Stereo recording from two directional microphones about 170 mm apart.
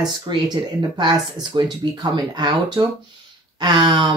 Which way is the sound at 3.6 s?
30° right (ahead or behind).